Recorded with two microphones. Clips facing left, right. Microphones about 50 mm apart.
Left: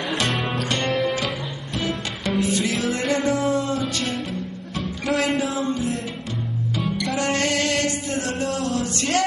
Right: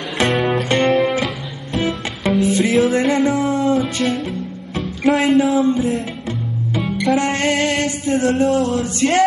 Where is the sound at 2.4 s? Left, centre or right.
Right.